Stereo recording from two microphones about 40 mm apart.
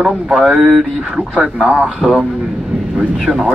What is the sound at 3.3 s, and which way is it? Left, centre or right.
Speech, centre.